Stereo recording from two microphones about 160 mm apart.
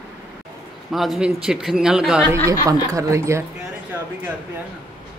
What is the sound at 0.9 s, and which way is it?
Speech, centre (ahead or behind).